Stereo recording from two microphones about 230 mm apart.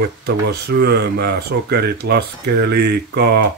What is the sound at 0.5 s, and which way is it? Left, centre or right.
Speech, right.